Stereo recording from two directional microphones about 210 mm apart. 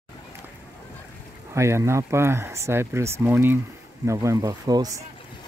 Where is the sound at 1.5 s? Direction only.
15° right (ahead or behind).